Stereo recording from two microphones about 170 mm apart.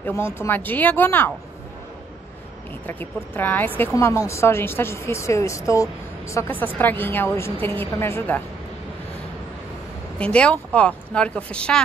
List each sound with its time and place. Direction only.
0.0 s speech: 15° left (ahead or behind)
2.9 s speech: 10° left (ahead or behind)
10.1 s speech: 5° left (ahead or behind)